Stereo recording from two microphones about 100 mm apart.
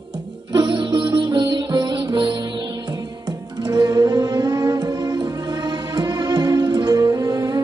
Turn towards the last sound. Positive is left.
turn(degrees=-40)  # may be behind; listen again after turning